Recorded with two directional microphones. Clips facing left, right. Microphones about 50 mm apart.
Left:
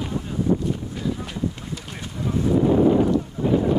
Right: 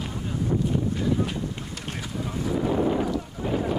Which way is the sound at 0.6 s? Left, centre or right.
Centre.